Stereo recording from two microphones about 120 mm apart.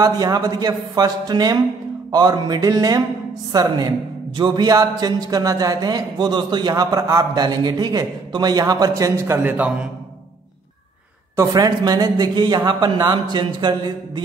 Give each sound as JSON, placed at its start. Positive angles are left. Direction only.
{"t": 0.0, "sound": "a man's voice", "side_deg": -30}
{"t": 11.3, "sound": "a man's voice", "side_deg": -30}